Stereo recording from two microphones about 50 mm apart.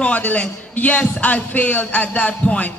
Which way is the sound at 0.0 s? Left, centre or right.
Left.